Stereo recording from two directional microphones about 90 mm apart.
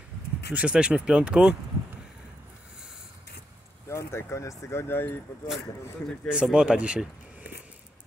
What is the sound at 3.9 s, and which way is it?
Speech, 30° left (ahead or behind).